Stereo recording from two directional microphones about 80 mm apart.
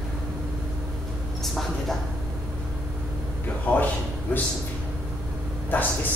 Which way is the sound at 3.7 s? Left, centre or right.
Centre.